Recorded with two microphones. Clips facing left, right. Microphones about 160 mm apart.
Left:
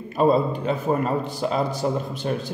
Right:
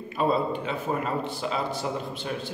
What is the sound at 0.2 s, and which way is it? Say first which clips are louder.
A man's voice: left 6 dB; 40° left (ahead or behind).